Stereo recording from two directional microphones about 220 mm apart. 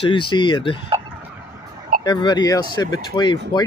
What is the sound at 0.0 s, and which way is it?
Speech, 25° left (ahead or behind).